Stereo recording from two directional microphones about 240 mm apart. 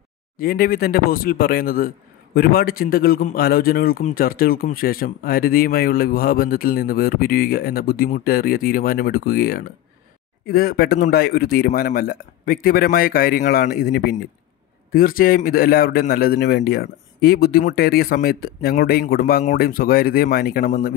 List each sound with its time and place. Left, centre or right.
0.4 s a man's voice: left